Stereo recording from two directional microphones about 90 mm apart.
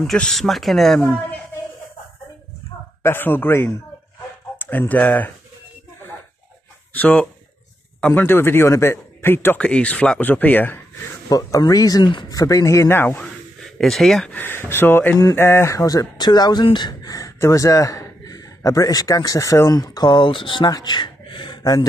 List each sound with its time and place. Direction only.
0.0 s speech: 5° left (ahead or behind)
3.0 s speech: 25° left (ahead or behind)
6.9 s a man's voice: 15° left (ahead or behind)
9.6 s speech: 15° left (ahead or behind)
11.2 s speech: 45° left (ahead or behind); by 13.2 s 25° left (ahead or behind)
13.2 s a sound: 5° left (ahead or behind)
14.3 s speech: 25° left (ahead or behind); by 20.7 s 65° left (ahead or behind)
20.7 s a sound: 55° left (ahead or behind)